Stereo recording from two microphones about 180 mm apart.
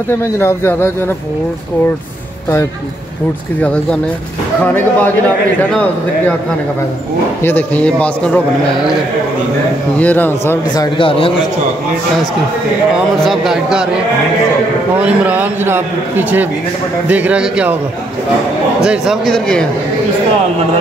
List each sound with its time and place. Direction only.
0.4 s speech: 15° left (ahead or behind)
5.7 s speech: 10° left (ahead or behind)
7.4 s speech: 10° left (ahead or behind)
9.9 s speech: 10° left (ahead or behind)
11.0 s a man's voice: 30° left (ahead or behind)
12.9 s speech: centre (ahead or behind)
15.0 s speech: 10° right (ahead or behind)
18.8 s speech: 5° right (ahead or behind)